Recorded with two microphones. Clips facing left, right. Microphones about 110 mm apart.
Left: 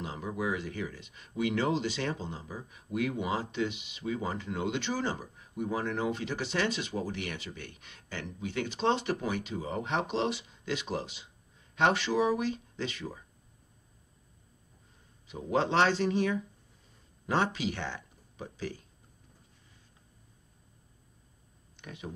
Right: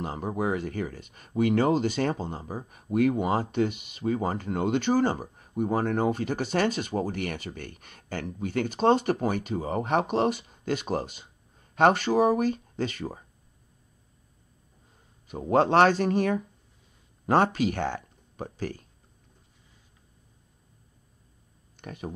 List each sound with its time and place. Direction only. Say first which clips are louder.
0.0 s speech: right 5 dB; 50° right (ahead or behind)
15.2 s speech: right 7 dB; 50° right (ahead or behind)
21.7 s speech: right 5 dB; 50° right (ahead or behind)